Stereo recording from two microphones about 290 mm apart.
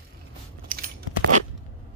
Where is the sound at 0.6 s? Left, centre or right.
Right.